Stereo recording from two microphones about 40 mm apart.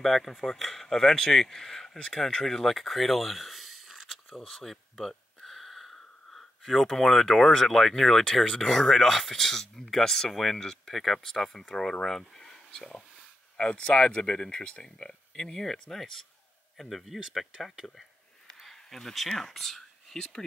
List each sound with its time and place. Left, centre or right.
0.0 s speech: centre
4.4 s speech: centre
4.9 s a sound: centre
7.0 s speech: centre
13.6 s speech: left
15.0 s speech: centre
17.8 s speech: left
18.5 s a sound: centre
20.2 s speech: centre